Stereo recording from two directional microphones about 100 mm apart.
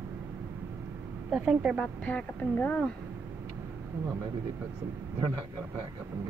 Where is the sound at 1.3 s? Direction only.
10° right (ahead or behind).